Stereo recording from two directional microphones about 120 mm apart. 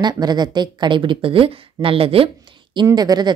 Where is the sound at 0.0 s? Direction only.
35° right (ahead or behind).